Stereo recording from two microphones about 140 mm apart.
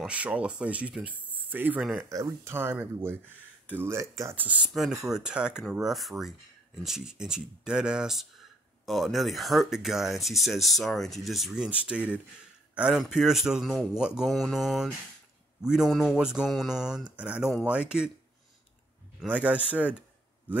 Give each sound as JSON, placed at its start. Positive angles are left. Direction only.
{"t": 0.0, "sound": "speech", "side_deg": -10}
{"t": 1.3, "sound": "a sound", "side_deg": -10}
{"t": 2.0, "sound": "speech", "side_deg": -20}
{"t": 19.2, "sound": "speech", "side_deg": -10}